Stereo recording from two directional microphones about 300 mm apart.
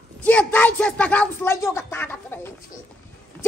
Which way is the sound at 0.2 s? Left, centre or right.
Centre.